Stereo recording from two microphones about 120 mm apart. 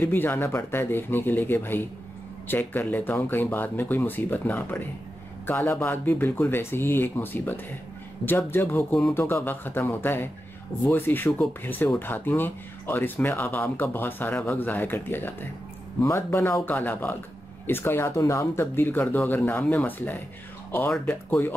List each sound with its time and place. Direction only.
0.0 s speech: 15° left (ahead or behind)